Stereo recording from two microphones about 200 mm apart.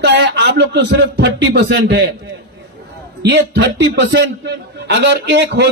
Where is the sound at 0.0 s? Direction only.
60° right (ahead or behind).